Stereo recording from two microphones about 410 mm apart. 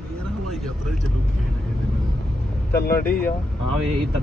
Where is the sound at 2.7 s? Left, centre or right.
Left.